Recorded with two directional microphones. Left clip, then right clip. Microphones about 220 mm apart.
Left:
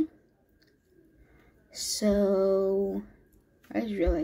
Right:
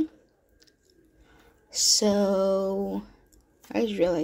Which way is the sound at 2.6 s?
30° right (ahead or behind).